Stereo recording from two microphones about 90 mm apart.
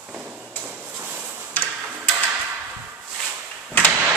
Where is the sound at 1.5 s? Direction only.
20° left (ahead or behind).